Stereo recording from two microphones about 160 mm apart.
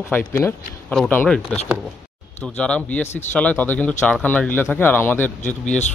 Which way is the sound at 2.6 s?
5° left (ahead or behind).